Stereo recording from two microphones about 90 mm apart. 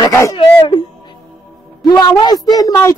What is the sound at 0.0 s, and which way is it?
Speech, 40° left (ahead or behind).